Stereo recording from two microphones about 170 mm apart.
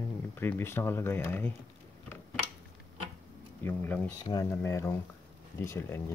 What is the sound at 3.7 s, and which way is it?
Speech, 10° left (ahead or behind).